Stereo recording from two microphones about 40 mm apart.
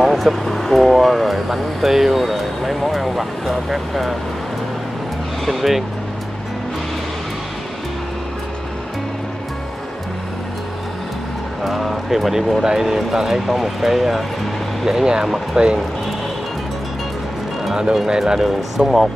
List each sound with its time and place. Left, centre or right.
0.0 s speech: centre
5.4 s speech: centre
11.6 s speech: centre; by 15.8 s right
18.0 s speech: centre